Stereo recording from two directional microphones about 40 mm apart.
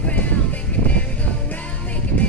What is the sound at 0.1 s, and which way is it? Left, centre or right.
Music, left.